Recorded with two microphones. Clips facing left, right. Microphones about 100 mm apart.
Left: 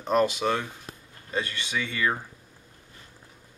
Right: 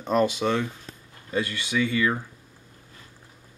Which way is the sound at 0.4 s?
15° left (ahead or behind).